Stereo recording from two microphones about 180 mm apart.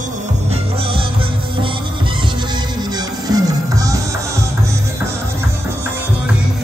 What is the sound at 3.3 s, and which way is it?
Music, 20° right (ahead or behind).